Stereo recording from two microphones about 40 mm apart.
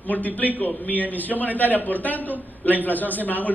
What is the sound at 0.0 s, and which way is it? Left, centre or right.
A man's voice, left.